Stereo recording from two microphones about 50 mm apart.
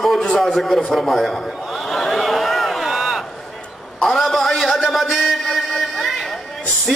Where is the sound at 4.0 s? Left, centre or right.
Centre.